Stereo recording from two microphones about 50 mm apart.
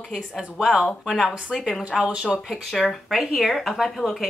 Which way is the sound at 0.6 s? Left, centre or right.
Centre.